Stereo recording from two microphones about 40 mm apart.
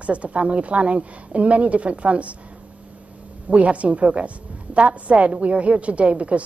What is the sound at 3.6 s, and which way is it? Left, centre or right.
A woman's voice, right.